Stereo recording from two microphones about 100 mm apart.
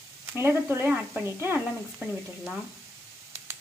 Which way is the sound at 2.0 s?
Centre (ahead or behind).